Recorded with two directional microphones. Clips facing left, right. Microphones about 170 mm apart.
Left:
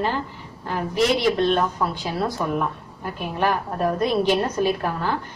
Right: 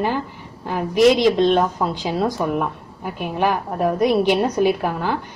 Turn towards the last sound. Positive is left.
turn(degrees=-15)  # may be behind; listen again after turning